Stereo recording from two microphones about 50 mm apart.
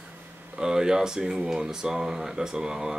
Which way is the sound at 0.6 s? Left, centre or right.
Centre.